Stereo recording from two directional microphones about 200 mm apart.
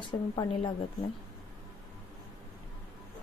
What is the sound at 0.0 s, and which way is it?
Speech, 25° left (ahead or behind).